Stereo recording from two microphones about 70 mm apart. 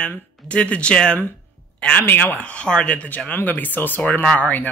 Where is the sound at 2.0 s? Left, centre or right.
Left.